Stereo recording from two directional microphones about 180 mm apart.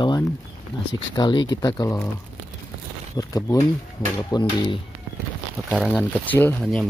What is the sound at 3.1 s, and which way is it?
Speech, 15° left (ahead or behind).